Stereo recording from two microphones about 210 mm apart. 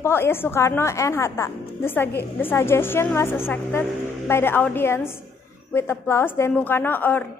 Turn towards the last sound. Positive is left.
turn(degrees=10)  # may be behind; listen again after turning